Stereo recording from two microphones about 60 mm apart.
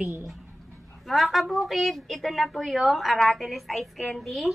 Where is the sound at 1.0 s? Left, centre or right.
Centre.